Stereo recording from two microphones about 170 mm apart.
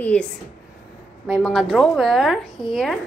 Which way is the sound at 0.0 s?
5° left (ahead or behind).